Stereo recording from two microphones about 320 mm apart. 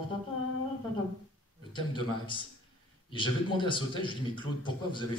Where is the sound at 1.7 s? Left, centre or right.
Centre.